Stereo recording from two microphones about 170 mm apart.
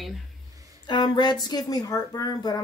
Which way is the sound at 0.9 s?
25° left (ahead or behind).